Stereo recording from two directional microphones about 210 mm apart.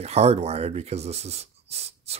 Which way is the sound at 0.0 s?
30° right (ahead or behind).